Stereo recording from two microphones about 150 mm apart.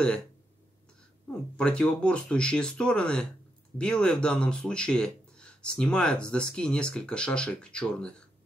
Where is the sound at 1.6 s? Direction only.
5° left (ahead or behind).